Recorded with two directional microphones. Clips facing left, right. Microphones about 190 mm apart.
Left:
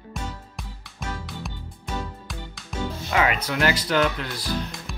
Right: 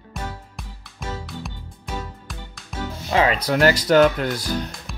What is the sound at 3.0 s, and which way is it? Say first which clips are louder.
Speech: right 4 dB; 30° right (ahead or behind).